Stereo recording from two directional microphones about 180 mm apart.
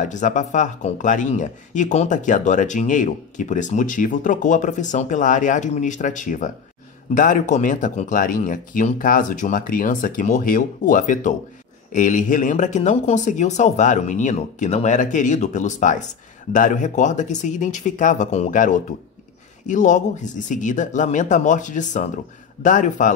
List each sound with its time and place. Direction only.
0.0 s speech: 45° left (ahead or behind)